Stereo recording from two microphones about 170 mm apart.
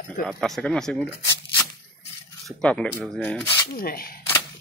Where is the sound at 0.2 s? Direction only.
Centre (ahead or behind).